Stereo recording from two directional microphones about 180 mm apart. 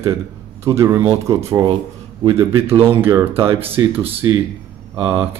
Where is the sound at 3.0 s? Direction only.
15° right (ahead or behind).